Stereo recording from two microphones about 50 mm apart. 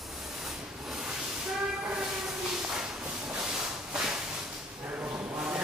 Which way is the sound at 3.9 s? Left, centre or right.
Centre.